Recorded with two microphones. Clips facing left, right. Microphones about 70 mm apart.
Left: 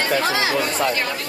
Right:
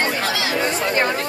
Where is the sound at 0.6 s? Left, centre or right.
Right.